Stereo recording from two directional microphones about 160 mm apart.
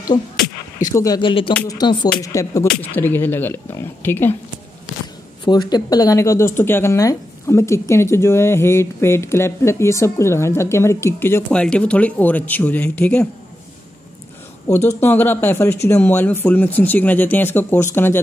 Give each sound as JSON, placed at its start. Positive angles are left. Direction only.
{"t": 0.9, "sound": "a woman's voice", "side_deg": 25}
{"t": 5.4, "sound": "a woman's voice", "side_deg": 25}
{"t": 14.9, "sound": "a woman's voice", "side_deg": 15}